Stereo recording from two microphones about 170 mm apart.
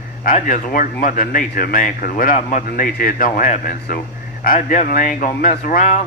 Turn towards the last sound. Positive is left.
turn(degrees=50)  # may be behind; listen again after turning